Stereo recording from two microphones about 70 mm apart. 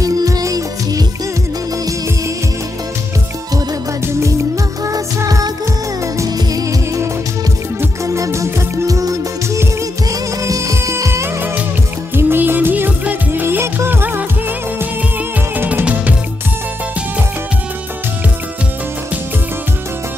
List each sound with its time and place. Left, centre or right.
0.0 s music: right
4.0 s music: right
4.8 s music: right
12.2 s music: right
15.5 s music: right